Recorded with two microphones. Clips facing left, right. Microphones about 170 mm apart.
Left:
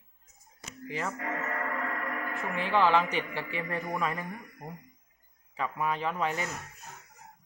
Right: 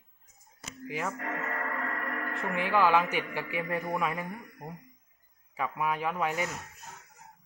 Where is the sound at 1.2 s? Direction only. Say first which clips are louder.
Left 1 dB; 10° left (ahead or behind).